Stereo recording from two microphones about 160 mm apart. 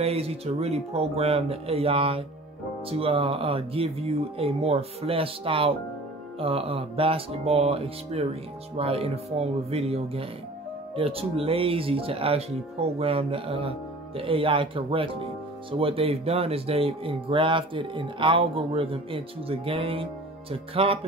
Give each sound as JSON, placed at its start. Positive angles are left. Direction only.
{"t": 0.0, "sound": "speech", "side_deg": -40}